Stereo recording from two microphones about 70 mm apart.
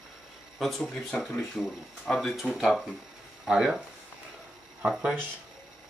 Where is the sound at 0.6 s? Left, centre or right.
Centre.